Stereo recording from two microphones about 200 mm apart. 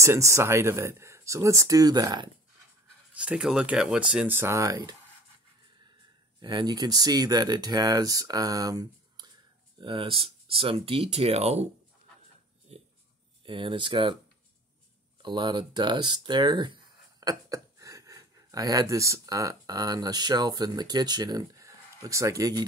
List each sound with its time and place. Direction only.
0.0 s speech: 15° right (ahead or behind)
3.2 s speech: 5° right (ahead or behind)
6.4 s speech: 20° right (ahead or behind)
12.7 s a sound: 30° right (ahead or behind)
13.5 s speech: 25° right (ahead or behind)
15.2 s speech: 20° right (ahead or behind)